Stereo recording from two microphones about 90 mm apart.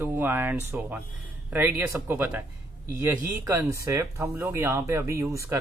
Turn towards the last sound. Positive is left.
turn(degrees=-30)  # may be behind; listen again after turning